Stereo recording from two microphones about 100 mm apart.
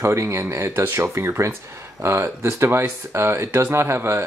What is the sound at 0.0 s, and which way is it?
Speech, 30° right (ahead or behind).